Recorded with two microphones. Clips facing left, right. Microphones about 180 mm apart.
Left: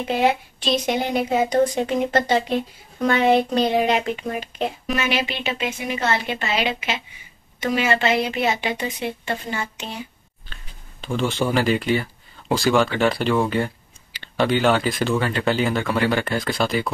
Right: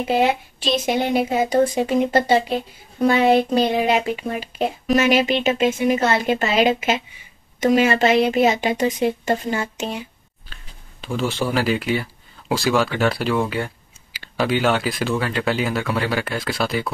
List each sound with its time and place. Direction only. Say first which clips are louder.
0.6 s speech: right 1 dB; 5° right (ahead or behind)
4.8 s speech: right 10 dB; 40° right (ahead or behind)
10.5 s speech: left 1 dB; 5° right (ahead or behind)